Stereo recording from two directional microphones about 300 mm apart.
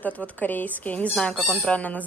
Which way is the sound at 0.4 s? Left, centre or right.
Centre.